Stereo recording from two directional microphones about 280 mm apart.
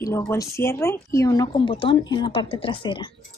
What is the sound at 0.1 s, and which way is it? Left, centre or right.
Speech, centre.